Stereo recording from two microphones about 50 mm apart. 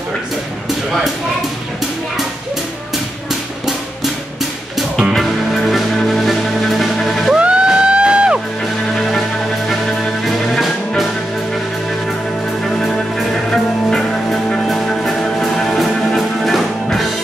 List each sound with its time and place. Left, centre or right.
5.1 s music: centre
7.3 s music: right
8.9 s music: centre
12.6 s music: centre